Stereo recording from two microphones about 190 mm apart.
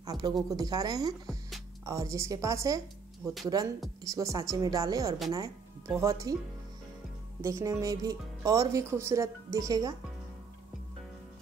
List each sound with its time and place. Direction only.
0.0 s a woman's voice: 20° right (ahead or behind)
7.4 s speech: 15° right (ahead or behind)